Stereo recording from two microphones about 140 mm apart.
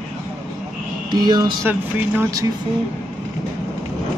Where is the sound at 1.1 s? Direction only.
30° right (ahead or behind).